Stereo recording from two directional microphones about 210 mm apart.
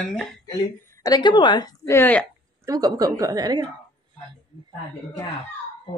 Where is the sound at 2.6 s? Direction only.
20° right (ahead or behind).